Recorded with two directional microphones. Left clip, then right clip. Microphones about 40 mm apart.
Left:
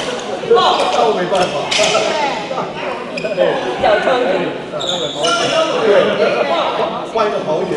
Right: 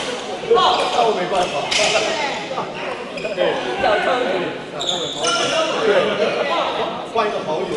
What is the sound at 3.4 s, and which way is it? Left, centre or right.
Speech, centre.